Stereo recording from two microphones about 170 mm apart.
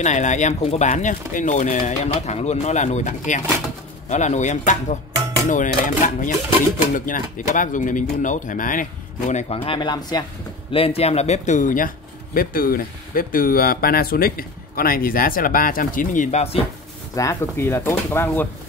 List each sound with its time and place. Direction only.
0.0 s speech: 45° left (ahead or behind)
9.3 s speech: 40° left (ahead or behind)
17.1 s speech: 20° left (ahead or behind)